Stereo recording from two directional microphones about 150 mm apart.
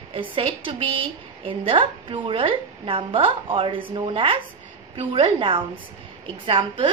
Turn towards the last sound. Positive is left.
turn(degrees=-35)  # may be behind; listen again after turning